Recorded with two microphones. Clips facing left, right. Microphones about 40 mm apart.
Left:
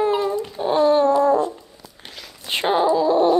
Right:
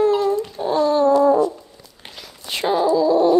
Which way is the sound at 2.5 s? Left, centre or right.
Left.